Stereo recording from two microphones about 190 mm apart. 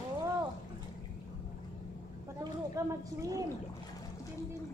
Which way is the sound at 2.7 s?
15° right (ahead or behind).